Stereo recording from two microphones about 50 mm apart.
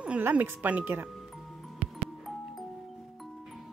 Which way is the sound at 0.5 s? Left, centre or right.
Right.